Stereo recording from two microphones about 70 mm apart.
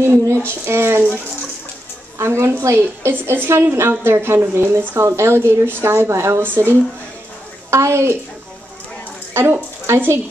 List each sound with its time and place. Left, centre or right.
0.0 s a sound: right
0.7 s speech: right
2.1 s speech: right
9.3 s speech: right